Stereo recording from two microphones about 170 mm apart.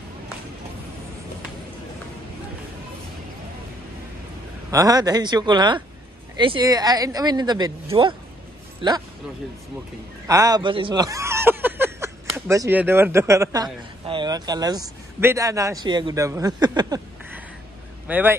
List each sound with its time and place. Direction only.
4.6 s speech: 20° right (ahead or behind)
10.2 s speech: 20° right (ahead or behind)
18.0 s speech: 10° right (ahead or behind)